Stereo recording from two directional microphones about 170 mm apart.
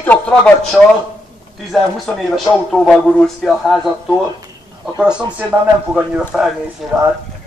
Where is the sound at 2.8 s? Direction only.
5° left (ahead or behind).